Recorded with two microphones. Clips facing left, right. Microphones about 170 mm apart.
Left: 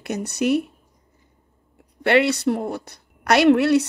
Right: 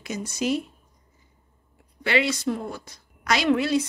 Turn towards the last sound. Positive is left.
turn(degrees=65)  # may be behind; listen again after turning